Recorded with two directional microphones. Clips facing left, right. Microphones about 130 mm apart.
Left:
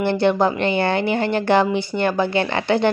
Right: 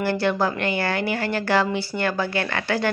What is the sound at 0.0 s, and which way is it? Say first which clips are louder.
A woman's voice: left 5 dB; 20° left (ahead or behind).